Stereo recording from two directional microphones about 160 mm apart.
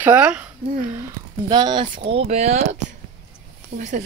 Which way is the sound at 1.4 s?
30° right (ahead or behind).